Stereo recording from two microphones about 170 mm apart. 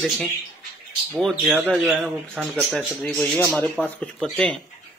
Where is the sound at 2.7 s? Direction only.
10° left (ahead or behind).